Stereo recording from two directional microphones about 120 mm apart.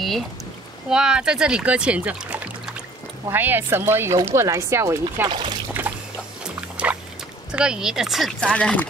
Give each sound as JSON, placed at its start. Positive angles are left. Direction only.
{"t": 0.8, "sound": "speech", "side_deg": -5}
{"t": 5.7, "sound": "a sound", "side_deg": -15}
{"t": 6.4, "sound": "boat", "side_deg": -10}
{"t": 7.5, "sound": "speech", "side_deg": -5}
{"t": 8.5, "sound": "speech", "side_deg": 10}